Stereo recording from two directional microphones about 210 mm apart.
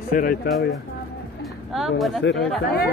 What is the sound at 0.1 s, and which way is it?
Speech, 45° left (ahead or behind).